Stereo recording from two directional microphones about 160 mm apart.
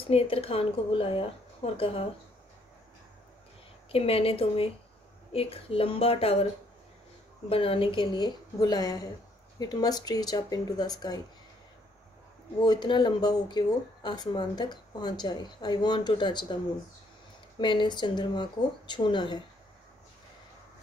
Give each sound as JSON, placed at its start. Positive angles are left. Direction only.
{"t": 0.1, "sound": "a woman's voice", "side_deg": 35}
{"t": 3.9, "sound": "a woman's voice", "side_deg": 35}
{"t": 7.4, "sound": "speech", "side_deg": 35}
{"t": 12.6, "sound": "speech", "side_deg": 30}
{"t": 17.6, "sound": "speech", "side_deg": 30}